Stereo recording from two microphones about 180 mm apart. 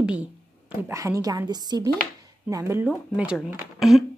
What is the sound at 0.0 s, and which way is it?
A woman's voice, 5° right (ahead or behind).